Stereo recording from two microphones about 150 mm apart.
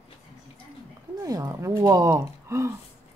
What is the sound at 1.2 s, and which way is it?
Gasp, 25° right (ahead or behind).